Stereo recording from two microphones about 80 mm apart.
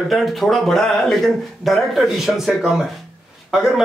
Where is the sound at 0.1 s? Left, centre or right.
Centre.